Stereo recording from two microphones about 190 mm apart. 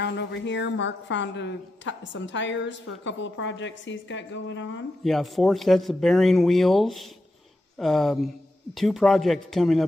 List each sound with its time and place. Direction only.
0.0 s a woman's voice: 65° left (ahead or behind)
5.0 s speech: centre (ahead or behind)